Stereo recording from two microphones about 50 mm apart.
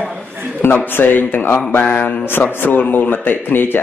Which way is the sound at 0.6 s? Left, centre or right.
Left.